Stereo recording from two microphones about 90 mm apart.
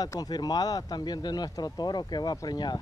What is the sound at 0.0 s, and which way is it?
Speech, 45° left (ahead or behind).